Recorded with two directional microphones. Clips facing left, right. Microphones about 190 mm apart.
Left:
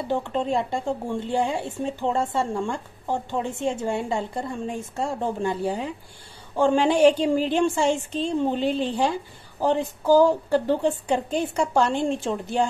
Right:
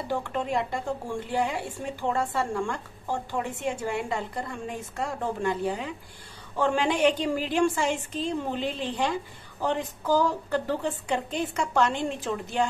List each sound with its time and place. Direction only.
0.1 s a woman's voice: 25° left (ahead or behind)